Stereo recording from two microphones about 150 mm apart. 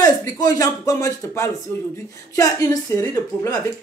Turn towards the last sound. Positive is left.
turn(degrees=20)  # may be behind; listen again after turning